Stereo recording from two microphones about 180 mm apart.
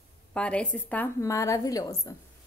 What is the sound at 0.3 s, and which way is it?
A woman's voice, 5° left (ahead or behind).